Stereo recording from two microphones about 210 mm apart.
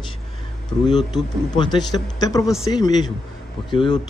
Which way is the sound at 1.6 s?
20° left (ahead or behind).